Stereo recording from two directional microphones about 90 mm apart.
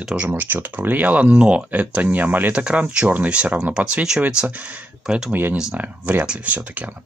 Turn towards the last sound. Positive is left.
turn(degrees=-15)  # may be behind; listen again after turning